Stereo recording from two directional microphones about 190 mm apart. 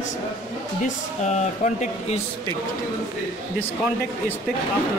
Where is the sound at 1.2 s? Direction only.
35° left (ahead or behind).